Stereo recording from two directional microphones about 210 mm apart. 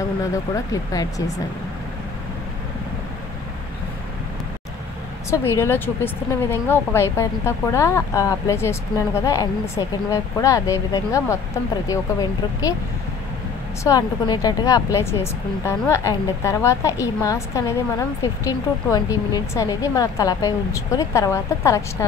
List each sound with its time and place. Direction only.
0.9 s speech: 15° left (ahead or behind)
5.3 s speech: 10° left (ahead or behind)
13.8 s speech: 20° left (ahead or behind)